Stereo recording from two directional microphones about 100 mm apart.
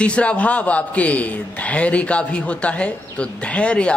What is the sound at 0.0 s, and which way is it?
A man's voice, 10° left (ahead or behind).